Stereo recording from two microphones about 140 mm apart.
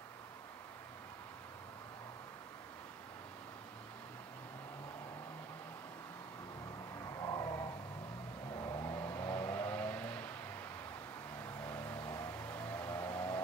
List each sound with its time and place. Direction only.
7.0 s vehicle: 25° left (ahead or behind)
11.6 s vehicle: 10° left (ahead or behind)
12.4 s a sound: 10° left (ahead or behind)